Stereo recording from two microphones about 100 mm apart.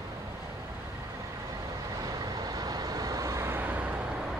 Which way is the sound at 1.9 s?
40° right (ahead or behind).